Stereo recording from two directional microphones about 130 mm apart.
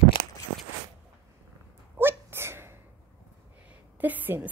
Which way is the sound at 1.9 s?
15° right (ahead or behind).